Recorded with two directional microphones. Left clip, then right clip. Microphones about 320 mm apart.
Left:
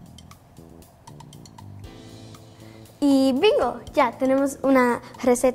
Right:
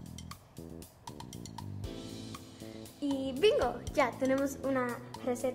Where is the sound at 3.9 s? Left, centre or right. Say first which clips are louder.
Left 10 dB; left.